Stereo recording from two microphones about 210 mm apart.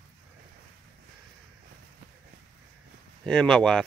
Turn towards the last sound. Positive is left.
turn(degrees=5)  # may be behind; listen again after turning